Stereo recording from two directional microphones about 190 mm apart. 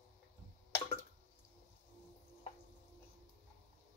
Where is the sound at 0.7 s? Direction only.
10° left (ahead or behind).